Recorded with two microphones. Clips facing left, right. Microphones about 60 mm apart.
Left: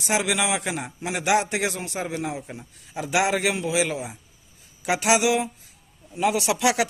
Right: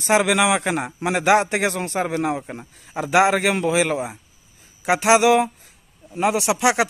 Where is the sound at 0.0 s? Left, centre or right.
Right.